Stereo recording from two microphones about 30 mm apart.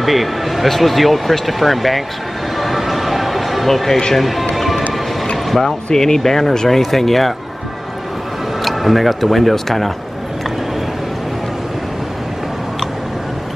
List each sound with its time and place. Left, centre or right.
0.0 s a man's voice: centre
2.5 s a sound: centre
4.1 s speech: centre
4.6 s music: centre
5.9 s speech: centre
7.0 s speech: centre
8.6 s speech: centre